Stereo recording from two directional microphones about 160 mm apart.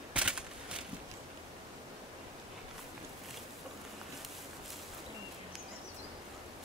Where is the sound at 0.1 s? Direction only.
5° right (ahead or behind).